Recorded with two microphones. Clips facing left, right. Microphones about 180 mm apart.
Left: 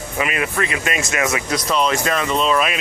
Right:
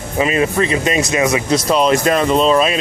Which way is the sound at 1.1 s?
20° right (ahead or behind).